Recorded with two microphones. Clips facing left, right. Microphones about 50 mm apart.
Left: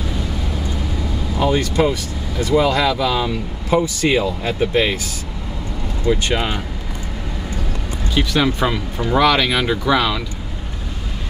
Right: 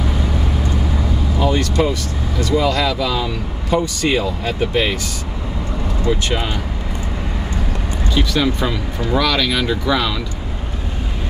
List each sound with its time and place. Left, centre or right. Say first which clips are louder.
1.4 s speech: left 1 dB; centre
8.1 s speech: even; centre